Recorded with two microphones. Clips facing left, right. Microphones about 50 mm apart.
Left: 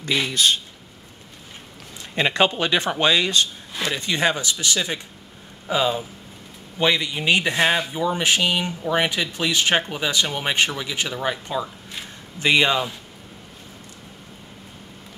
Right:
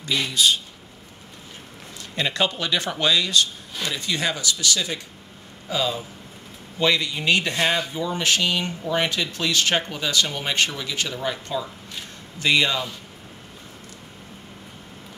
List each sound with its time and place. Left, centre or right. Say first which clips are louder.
0.3 s speech: right 1 dB; left
2.1 s speech: left 4 dB; left